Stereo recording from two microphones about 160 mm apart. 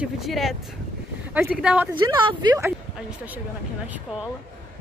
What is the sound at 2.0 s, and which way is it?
Speech, 30° right (ahead or behind).